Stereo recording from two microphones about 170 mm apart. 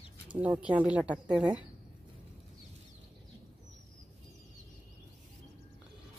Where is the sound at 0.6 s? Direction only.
5° right (ahead or behind).